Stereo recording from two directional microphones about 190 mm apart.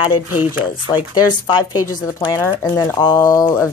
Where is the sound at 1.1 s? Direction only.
20° left (ahead or behind).